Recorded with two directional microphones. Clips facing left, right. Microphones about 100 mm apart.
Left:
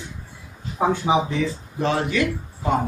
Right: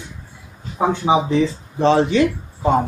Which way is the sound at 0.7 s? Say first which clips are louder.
Right 3 dB; 20° right (ahead or behind).